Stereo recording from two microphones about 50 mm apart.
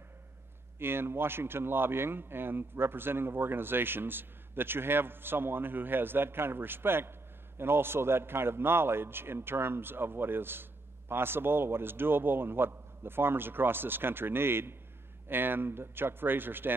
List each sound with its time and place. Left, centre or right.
0.7 s a man's voice: right